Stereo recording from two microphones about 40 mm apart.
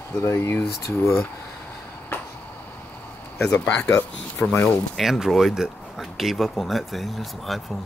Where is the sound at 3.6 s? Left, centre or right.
Left.